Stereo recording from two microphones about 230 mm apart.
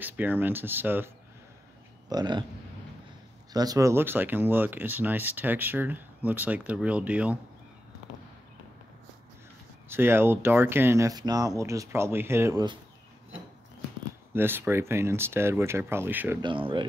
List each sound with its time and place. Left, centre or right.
0.0 s speech: centre
3.5 s speech: centre
9.8 s speech: centre
14.3 s speech: centre
16.3 s speech: right